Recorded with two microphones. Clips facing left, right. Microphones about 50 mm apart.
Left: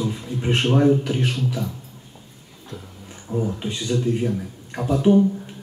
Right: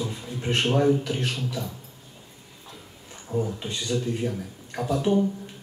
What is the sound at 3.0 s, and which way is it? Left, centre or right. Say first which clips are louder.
Speech: left 2 dB; centre.